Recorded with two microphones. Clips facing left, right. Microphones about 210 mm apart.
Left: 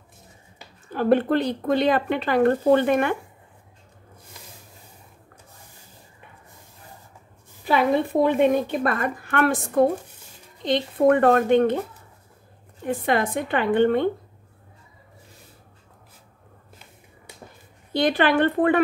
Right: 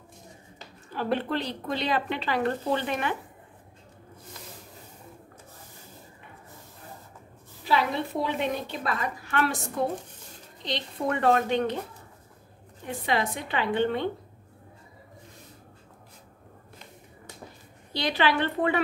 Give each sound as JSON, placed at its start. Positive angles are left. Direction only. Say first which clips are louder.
{"t": 0.9, "sound": "a woman's voice", "louder": "left 9 dB", "side_deg": 50}
{"t": 7.6, "sound": "a woman's voice", "louder": "left 6 dB", "side_deg": 50}
{"t": 12.8, "sound": "a woman's voice", "louder": "left 5 dB", "side_deg": 50}
{"t": 17.9, "sound": "a woman's voice", "louder": "left 6 dB", "side_deg": 50}